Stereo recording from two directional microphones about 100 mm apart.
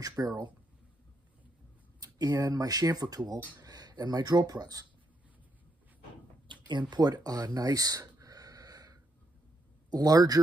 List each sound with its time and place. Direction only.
0.2 s speech: 40° right (ahead or behind)
2.0 s speech: 40° right (ahead or behind)
6.4 s a sound: 50° right (ahead or behind)
9.8 s speech: 40° right (ahead or behind)